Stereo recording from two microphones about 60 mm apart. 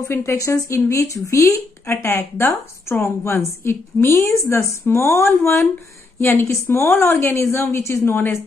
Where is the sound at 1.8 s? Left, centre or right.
Left.